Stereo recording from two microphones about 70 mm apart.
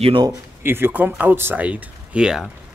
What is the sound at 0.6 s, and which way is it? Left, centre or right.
Speech, right.